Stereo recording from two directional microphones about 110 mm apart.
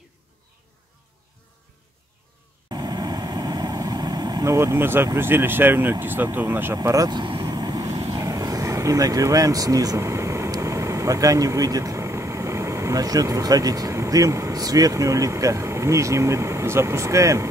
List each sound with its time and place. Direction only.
2.7 s vehicle: 40° right (ahead or behind)
4.6 s speech: 20° right (ahead or behind)
6.3 s vehicle: 15° right (ahead or behind); by 8.0 s 35° right (ahead or behind)
8.2 s speech: 30° right (ahead or behind)